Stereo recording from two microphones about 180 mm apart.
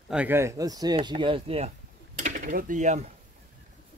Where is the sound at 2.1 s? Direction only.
45° right (ahead or behind).